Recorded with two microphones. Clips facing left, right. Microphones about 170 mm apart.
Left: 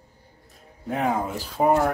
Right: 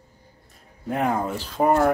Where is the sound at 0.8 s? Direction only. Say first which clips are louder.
Right 1 dB; centre (ahead or behind).